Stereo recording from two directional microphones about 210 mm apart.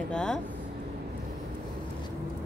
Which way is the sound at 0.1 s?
5° left (ahead or behind).